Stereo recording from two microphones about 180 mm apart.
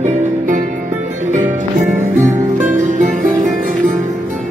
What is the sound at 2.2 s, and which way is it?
Music, 45° right (ahead or behind).